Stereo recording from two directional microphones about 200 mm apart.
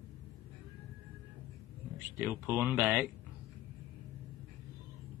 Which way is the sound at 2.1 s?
10° right (ahead or behind).